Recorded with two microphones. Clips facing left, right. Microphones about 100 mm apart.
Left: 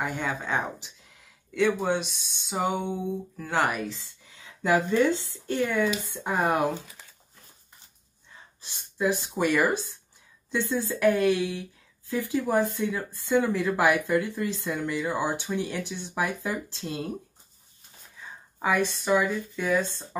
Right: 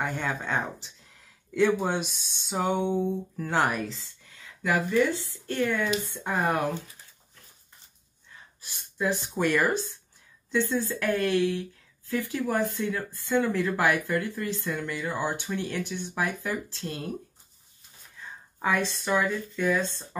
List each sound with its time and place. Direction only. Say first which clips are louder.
0.0 s speech: even; 5° left (ahead or behind)
4.4 s speech: left 3 dB; 25° left (ahead or behind)
8.5 s speech: left 1 dB; 25° left (ahead or behind)
18.6 s speech: left 2 dB; 10° left (ahead or behind)